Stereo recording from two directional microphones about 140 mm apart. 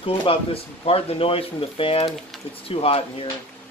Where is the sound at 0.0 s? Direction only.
40° left (ahead or behind).